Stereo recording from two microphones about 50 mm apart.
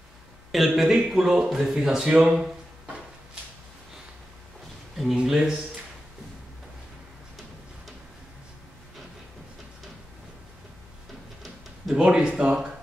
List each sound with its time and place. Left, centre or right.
0.5 s speech: centre
5.1 s speech: centre
12.0 s speech: right